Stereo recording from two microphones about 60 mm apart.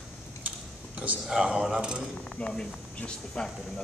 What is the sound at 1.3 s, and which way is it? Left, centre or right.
Speech, centre.